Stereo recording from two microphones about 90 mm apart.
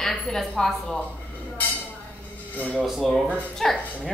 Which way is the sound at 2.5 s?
20° left (ahead or behind).